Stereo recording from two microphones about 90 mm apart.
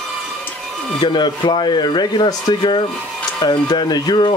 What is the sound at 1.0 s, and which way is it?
Speech, 55° left (ahead or behind).